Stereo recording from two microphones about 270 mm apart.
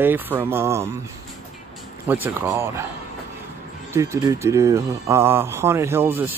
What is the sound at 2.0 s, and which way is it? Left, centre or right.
Speech, centre.